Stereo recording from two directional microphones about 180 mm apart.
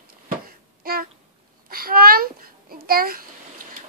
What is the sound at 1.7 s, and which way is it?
A child's voice, 55° right (ahead or behind).